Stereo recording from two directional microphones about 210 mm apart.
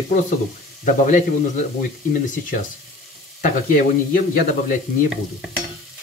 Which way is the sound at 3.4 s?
40° left (ahead or behind).